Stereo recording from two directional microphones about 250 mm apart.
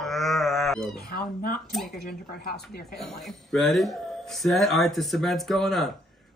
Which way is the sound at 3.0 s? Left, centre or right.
Centre.